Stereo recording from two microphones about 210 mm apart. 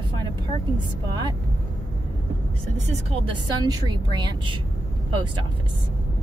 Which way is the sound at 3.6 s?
20° right (ahead or behind).